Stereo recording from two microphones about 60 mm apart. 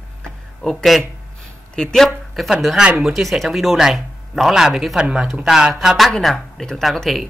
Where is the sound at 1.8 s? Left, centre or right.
Centre.